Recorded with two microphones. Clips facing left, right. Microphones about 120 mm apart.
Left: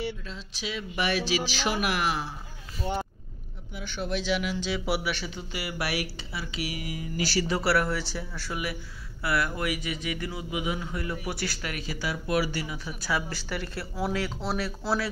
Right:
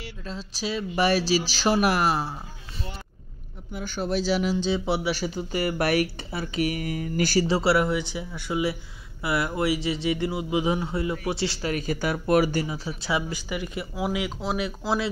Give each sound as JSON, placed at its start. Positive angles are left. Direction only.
{"t": 0.3, "sound": "speech", "side_deg": -35}
{"t": 3.7, "sound": "speech", "side_deg": -40}
{"t": 5.1, "sound": "speech", "side_deg": -40}
{"t": 7.4, "sound": "a man's voice", "side_deg": -25}
{"t": 11.7, "sound": "speech", "side_deg": -50}
{"t": 12.6, "sound": "speech", "side_deg": -30}